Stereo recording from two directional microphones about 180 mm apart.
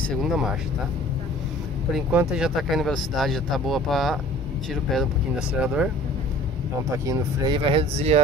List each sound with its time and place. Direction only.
0.0 s speech: centre (ahead or behind)
2.0 s speech: 5° right (ahead or behind)
7.1 s speech: 25° right (ahead or behind)